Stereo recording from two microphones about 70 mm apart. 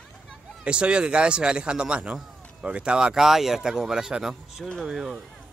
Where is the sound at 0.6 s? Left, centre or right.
Centre.